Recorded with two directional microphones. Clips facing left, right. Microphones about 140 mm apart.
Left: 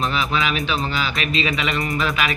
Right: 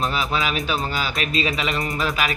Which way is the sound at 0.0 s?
40° right (ahead or behind).